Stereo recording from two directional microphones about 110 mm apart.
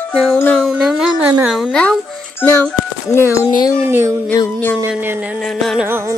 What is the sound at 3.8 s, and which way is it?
Speech, 20° right (ahead or behind).